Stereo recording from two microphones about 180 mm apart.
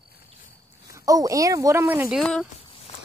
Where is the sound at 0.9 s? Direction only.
20° right (ahead or behind); by 2.4 s centre (ahead or behind).